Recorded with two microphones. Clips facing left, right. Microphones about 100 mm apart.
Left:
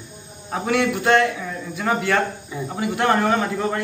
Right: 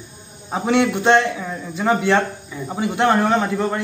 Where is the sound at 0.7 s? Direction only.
25° right (ahead or behind).